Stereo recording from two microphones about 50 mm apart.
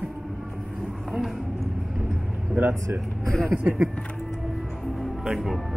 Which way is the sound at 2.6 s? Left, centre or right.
Right.